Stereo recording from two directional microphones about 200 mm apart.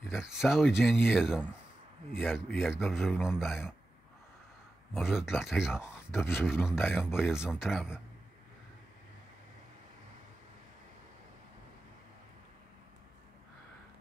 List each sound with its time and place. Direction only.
0.1 s a man's voice: 5° right (ahead or behind)
4.9 s a man's voice: 5° right (ahead or behind)
6.1 s speech: 10° left (ahead or behind)
6.4 s a man's voice: 5° right (ahead or behind)
6.8 s speech: 10° left (ahead or behind)
7.2 s a man's voice: 5° right (ahead or behind)